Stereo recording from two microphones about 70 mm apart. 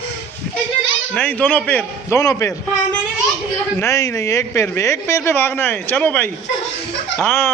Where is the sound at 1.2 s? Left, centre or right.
Left.